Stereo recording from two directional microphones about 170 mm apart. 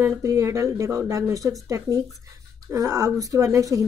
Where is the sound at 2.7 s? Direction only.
20° right (ahead or behind).